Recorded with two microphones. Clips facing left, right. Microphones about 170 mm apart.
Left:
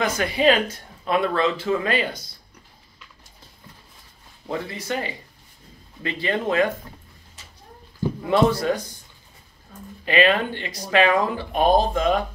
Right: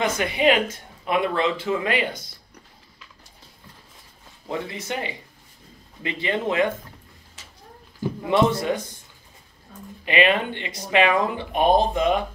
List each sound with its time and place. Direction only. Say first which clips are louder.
0.2 s speech: left 2 dB; 20° right (ahead or behind)
4.5 s speech: left 1 dB; 20° right (ahead or behind)
8.2 s speech: left 1 dB; 25° right (ahead or behind)
10.0 s speech: left 1 dB; 20° right (ahead or behind)